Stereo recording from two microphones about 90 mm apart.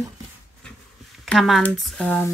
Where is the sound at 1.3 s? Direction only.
Centre (ahead or behind).